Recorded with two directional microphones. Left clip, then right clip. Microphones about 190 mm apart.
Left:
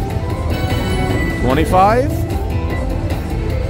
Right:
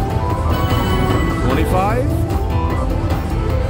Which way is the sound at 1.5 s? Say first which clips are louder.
Left 7 dB; 25° left (ahead or behind).